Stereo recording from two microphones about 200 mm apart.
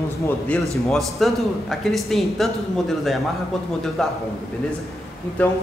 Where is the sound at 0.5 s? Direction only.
Centre (ahead or behind).